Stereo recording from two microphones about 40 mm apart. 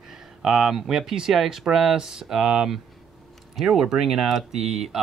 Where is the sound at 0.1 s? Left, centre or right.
Centre.